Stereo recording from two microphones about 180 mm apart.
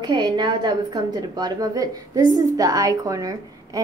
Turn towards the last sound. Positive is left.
turn(degrees=-20)  # may be behind; listen again after turning